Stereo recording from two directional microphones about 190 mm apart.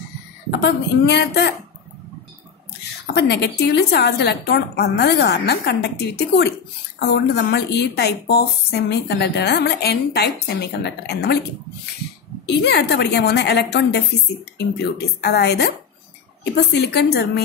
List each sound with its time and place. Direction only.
0.5 s a woman's voice: 60° left (ahead or behind)
3.2 s a woman's voice: 65° left (ahead or behind)
12.4 s a woman's voice: 60° left (ahead or behind)
16.7 s a woman's voice: 60° left (ahead or behind)